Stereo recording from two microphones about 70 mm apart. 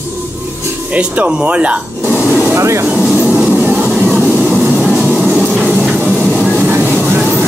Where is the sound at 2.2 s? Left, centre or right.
Centre.